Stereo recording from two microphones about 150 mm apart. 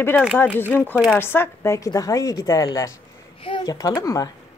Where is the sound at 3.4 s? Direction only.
35° left (ahead or behind).